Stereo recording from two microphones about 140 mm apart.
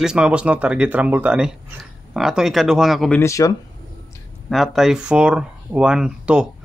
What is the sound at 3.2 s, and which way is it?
Speech, 20° left (ahead or behind).